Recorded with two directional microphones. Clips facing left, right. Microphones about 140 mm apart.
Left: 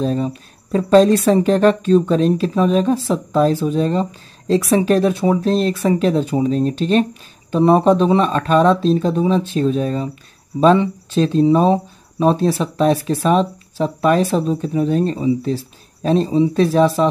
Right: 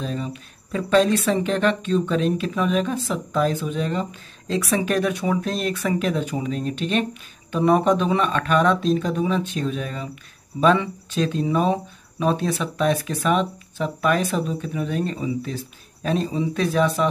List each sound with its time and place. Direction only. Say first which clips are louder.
0.0 s speech: left 9 dB; 35° left (ahead or behind)